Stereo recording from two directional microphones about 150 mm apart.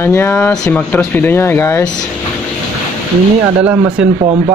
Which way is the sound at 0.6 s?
5° left (ahead or behind).